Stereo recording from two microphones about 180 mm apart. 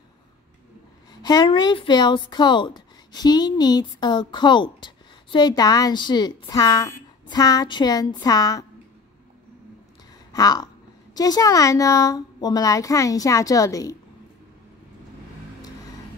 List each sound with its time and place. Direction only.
1.2 s speech: 25° left (ahead or behind)
10.3 s speech: 20° left (ahead or behind)